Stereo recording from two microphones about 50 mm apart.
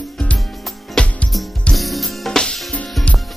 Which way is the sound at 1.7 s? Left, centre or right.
Centre.